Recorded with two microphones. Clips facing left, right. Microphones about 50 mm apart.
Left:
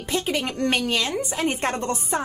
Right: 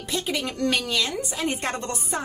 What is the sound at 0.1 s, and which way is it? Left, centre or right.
Speech, left.